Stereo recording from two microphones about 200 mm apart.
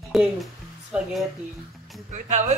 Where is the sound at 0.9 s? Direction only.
5° right (ahead or behind).